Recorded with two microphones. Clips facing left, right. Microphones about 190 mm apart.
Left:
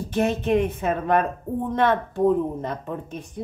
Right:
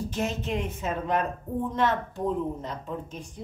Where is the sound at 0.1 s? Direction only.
60° left (ahead or behind).